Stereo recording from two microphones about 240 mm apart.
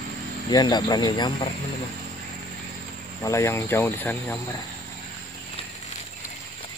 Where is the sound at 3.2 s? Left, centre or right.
Centre.